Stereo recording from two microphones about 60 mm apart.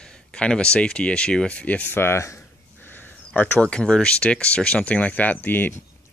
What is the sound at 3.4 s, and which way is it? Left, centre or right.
Speech, centre.